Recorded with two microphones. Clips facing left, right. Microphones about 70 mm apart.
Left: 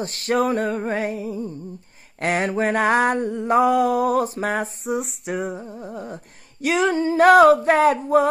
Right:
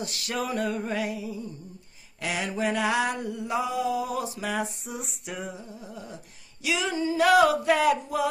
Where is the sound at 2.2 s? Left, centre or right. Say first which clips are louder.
Left 7 dB; left.